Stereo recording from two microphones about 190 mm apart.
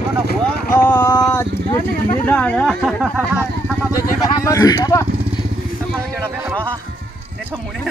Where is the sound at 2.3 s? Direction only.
5° left (ahead or behind).